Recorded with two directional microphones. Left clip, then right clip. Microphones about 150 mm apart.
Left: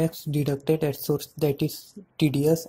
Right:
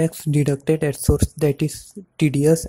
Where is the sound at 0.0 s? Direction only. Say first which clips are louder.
Right 5 dB; 40° right (ahead or behind).